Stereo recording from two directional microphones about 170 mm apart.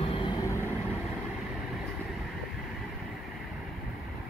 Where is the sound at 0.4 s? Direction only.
20° left (ahead or behind).